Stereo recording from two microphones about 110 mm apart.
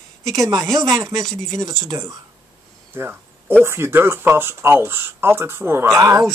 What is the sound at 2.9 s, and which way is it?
Cricket, 20° right (ahead or behind).